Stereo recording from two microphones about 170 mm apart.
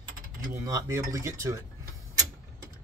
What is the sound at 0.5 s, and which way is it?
Speech, 20° right (ahead or behind).